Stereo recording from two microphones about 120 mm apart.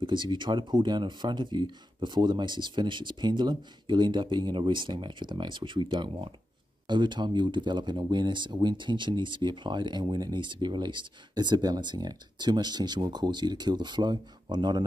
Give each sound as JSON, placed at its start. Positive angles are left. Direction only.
{"t": 0.0, "sound": "speech", "side_deg": -40}